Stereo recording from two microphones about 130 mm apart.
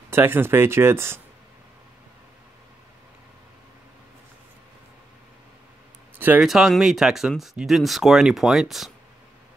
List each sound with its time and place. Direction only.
0.1 s speech: 15° right (ahead or behind)
6.1 s a sound: 15° right (ahead or behind)
6.4 s speech: 5° right (ahead or behind)